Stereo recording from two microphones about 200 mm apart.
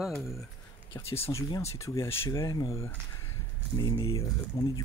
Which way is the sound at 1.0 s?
30° left (ahead or behind).